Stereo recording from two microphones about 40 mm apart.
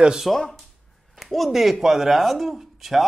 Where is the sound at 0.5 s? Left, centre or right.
Centre.